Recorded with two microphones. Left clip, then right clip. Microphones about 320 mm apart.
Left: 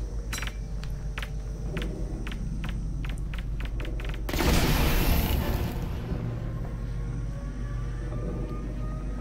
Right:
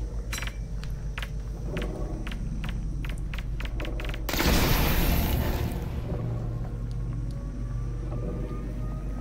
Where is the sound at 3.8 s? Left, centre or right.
Centre.